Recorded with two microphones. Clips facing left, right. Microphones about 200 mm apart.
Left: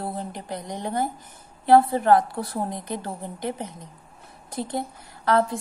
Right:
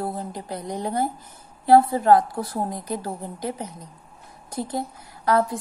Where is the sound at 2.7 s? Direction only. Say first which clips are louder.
Right 2 dB; 20° left (ahead or behind).